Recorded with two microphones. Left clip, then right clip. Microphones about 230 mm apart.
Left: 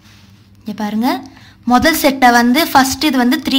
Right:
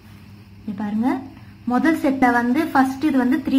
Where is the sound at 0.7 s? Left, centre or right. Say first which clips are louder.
Left 6 dB; left.